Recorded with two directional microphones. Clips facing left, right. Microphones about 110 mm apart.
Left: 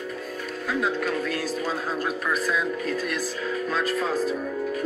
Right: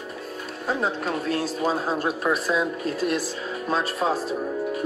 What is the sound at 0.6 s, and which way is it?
Speech, 35° right (ahead or behind).